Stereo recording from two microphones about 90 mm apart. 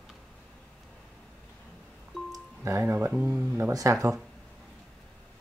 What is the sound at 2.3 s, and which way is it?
Music, 35° right (ahead or behind).